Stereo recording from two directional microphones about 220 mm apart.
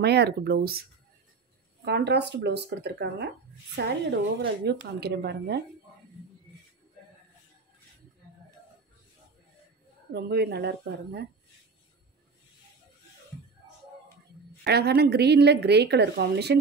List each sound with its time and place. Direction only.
0.0 s a woman's voice: 50° right (ahead or behind)
1.9 s a woman's voice: 50° right (ahead or behind)
10.1 s a woman's voice: 45° right (ahead or behind)
14.6 s a woman's voice: 45° right (ahead or behind)